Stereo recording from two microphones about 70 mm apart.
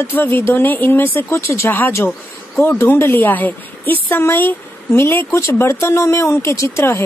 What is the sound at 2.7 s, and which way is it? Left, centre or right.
A woman's voice, left.